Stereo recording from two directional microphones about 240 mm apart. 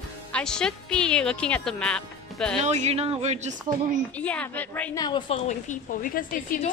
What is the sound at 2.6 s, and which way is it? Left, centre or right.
Speech, right.